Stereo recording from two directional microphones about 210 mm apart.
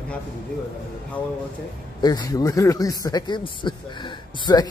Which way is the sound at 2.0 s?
20° left (ahead or behind).